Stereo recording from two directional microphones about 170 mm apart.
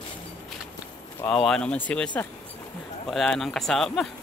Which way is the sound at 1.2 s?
5° left (ahead or behind).